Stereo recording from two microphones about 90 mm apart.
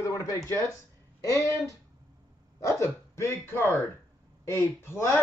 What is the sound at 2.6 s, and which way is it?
A man's voice, 30° left (ahead or behind).